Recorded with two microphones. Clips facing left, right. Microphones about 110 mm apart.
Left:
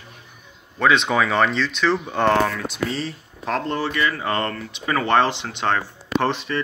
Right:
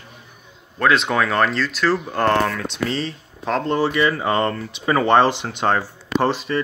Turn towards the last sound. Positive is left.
turn(degrees=-25)  # may be behind; listen again after turning